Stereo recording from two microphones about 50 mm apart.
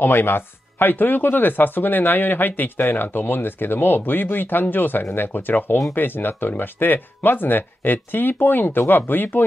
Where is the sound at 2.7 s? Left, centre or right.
Left.